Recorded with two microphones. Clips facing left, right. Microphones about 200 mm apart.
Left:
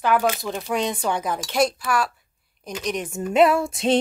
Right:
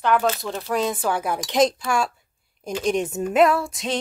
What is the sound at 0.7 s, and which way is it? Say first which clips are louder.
A woman's voice: right 1 dB; centre (ahead or behind).